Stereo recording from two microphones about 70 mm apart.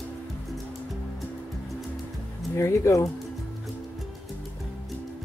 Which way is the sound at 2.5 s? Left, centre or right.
Left.